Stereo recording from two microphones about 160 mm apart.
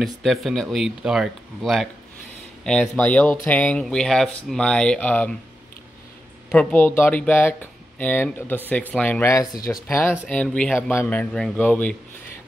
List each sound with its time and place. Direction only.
0.0 s speech: centre (ahead or behind)
6.5 s speech: 10° left (ahead or behind)